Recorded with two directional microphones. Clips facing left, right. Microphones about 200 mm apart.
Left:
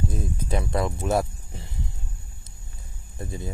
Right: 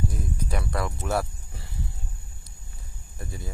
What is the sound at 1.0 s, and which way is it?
Music, 20° left (ahead or behind).